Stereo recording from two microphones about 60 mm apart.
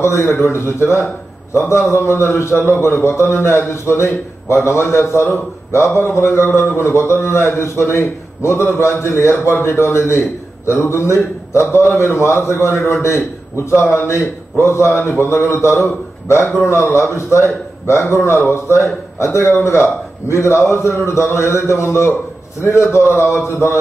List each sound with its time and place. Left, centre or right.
0.0 s a man's voice: left